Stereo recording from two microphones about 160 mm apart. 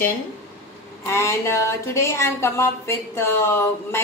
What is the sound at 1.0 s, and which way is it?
Speech, 15° left (ahead or behind).